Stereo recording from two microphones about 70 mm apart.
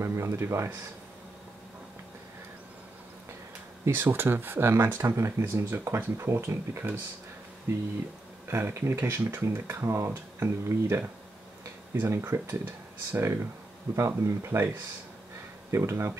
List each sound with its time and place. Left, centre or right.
0.0 s speech: right
3.9 s speech: right
5.0 s speech: right
15.7 s speech: right